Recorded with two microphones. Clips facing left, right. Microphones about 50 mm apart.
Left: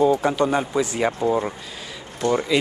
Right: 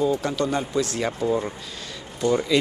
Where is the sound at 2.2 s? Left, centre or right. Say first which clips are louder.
Left 1 dB; left.